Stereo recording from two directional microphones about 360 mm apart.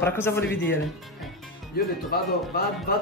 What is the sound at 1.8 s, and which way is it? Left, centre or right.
Speech, left.